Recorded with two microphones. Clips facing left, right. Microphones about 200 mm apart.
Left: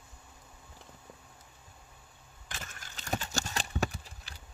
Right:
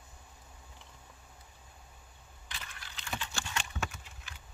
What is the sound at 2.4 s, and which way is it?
Clip-clop, 45° left (ahead or behind).